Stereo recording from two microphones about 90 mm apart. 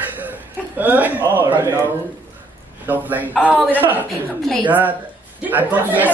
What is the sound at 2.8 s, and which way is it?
Speech, 20° right (ahead or behind).